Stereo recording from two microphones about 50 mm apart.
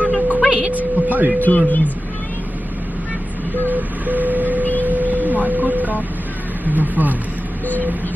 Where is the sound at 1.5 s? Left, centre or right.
Left.